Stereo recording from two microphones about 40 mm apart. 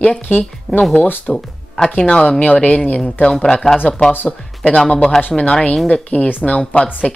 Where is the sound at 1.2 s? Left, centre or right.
Centre.